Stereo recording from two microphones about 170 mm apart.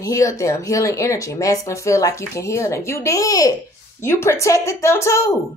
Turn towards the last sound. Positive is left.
turn(degrees=15)  # may be behind; listen again after turning